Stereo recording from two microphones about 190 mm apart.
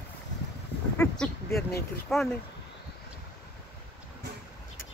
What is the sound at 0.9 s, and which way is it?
Speech, 10° left (ahead or behind).